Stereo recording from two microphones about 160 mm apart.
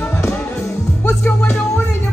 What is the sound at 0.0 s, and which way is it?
Music, 15° left (ahead or behind).